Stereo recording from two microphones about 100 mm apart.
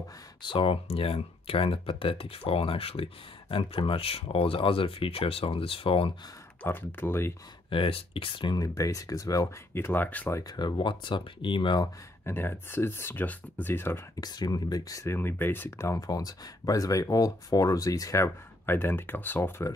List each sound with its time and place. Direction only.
0.4 s speech: 60° left (ahead or behind)
6.6 s speech: 20° left (ahead or behind)
7.7 s speech: 65° left (ahead or behind)
8.5 s speech: 35° left (ahead or behind)
9.8 s speech: 20° left (ahead or behind)
10.4 s speech: 45° left (ahead or behind)
12.3 s speech: 25° left (ahead or behind)
14.2 s speech: 40° left (ahead or behind)
15.1 s speech: 20° left (ahead or behind)